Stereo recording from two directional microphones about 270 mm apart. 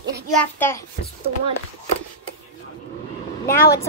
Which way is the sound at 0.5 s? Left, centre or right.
Centre.